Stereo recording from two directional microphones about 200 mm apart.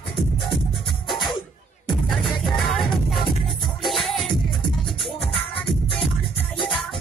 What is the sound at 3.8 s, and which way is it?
Music, centre (ahead or behind).